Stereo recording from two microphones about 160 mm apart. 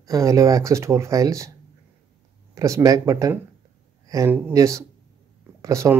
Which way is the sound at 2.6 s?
20° right (ahead or behind).